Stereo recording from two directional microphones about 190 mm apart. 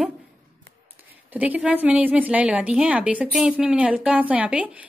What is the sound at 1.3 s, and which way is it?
A woman's voice, 10° right (ahead or behind).